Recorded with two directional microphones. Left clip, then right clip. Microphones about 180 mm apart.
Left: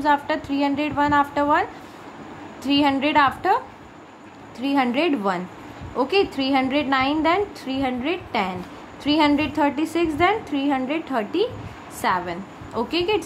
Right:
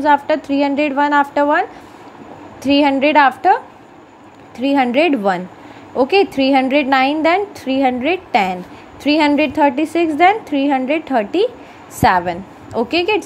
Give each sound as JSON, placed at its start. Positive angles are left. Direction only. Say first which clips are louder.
{"t": 0.0, "sound": "a woman's voice", "louder": "right 7 dB", "side_deg": -25}